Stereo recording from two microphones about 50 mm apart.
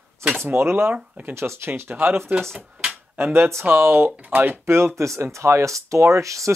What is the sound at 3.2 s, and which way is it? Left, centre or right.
Speech, right.